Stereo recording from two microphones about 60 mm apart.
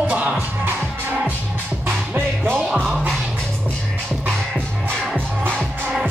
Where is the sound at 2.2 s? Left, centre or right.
Right.